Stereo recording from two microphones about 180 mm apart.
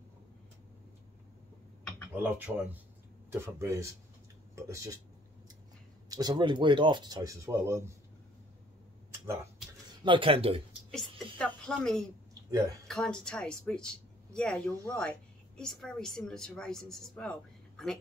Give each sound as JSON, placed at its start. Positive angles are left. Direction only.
{"t": 2.2, "sound": "speech", "side_deg": -10}
{"t": 6.0, "sound": "speech", "side_deg": -20}
{"t": 10.0, "sound": "speech", "side_deg": -30}
{"t": 11.3, "sound": "speech", "side_deg": 5}
{"t": 12.4, "sound": "speech", "side_deg": -20}
{"t": 12.8, "sound": "speech", "side_deg": 5}